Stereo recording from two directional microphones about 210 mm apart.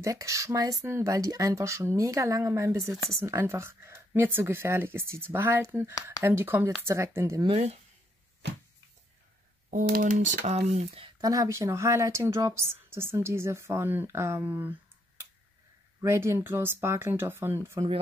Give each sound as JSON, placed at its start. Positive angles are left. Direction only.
{"t": 0.0, "sound": "speech", "side_deg": -15}
{"t": 7.4, "sound": "speech", "side_deg": -30}
{"t": 9.7, "sound": "speech", "side_deg": -40}
{"t": 11.1, "sound": "speech", "side_deg": -15}
{"t": 16.0, "sound": "speech", "side_deg": -10}